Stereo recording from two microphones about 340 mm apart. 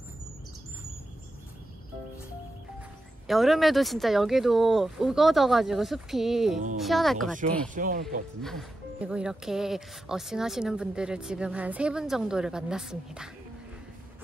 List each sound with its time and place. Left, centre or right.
3.3 s speech: centre
7.6 s speech: right
8.4 s speech: centre